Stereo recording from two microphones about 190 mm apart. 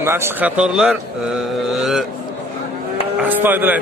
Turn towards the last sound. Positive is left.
turn(degrees=-10)  # may be behind; listen again after turning